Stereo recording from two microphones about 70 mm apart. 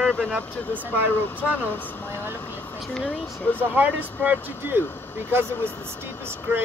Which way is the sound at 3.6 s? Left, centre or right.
Right.